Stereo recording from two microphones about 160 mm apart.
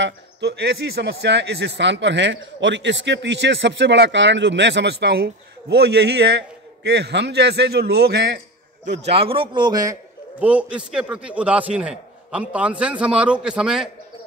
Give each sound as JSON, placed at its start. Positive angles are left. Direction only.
{"t": 0.0, "sound": "a man's voice", "side_deg": -90}
{"t": 9.0, "sound": "a man's voice", "side_deg": -35}
{"t": 10.4, "sound": "a man's voice", "side_deg": -10}